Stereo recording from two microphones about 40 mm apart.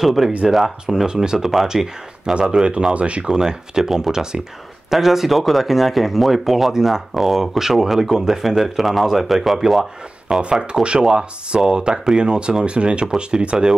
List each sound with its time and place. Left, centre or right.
0.0 s speech: centre
1.0 s speech: centre
1.4 s speech: centre
2.9 s speech: right
3.3 s speech: centre
9.8 s speech: centre
10.5 s speech: right
13.0 s speech: centre